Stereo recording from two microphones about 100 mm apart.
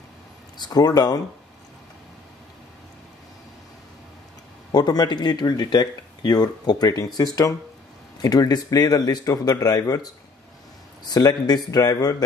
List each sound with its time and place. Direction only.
0.6 s speech: 40° left (ahead or behind)
4.7 s speech: 40° left (ahead or behind)
11.1 s speech: 40° left (ahead or behind)